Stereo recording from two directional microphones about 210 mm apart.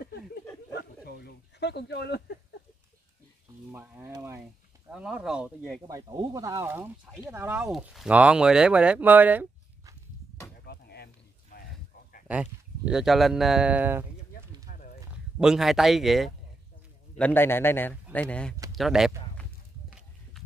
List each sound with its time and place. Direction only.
0.0 s a sound: 50° left (ahead or behind)
3.7 s frying: 10° right (ahead or behind)
4.9 s speech: 5° right (ahead or behind)
5.8 s speech: 15° right (ahead or behind)
10.6 s a sound: 50° left (ahead or behind)
12.3 s speech: 5° right (ahead or behind)
14.7 s a sound: 40° left (ahead or behind)
15.3 s speech: centre (ahead or behind)
17.2 s a man's voice: 10° left (ahead or behind)